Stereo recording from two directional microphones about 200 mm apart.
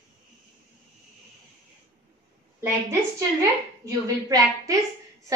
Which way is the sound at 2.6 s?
15° right (ahead or behind).